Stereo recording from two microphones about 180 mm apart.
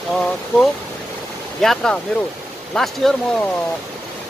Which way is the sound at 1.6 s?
5° left (ahead or behind).